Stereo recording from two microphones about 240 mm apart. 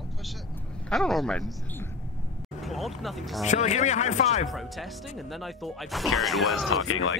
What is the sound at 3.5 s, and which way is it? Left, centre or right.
Speech, left.